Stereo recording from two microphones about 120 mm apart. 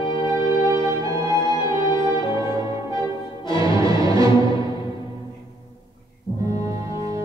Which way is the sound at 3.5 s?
30° right (ahead or behind).